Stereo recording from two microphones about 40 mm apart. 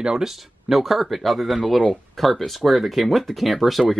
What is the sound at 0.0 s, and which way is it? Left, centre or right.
Speech, centre.